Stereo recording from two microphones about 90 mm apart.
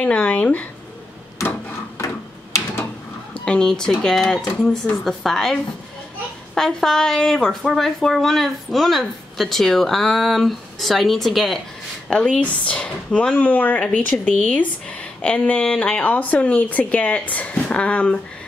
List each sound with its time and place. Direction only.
0.0 s speech: 15° left (ahead or behind)
3.4 s a woman's voice: 10° left (ahead or behind)